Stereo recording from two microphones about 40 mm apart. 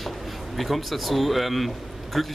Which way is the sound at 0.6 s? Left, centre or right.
Centre.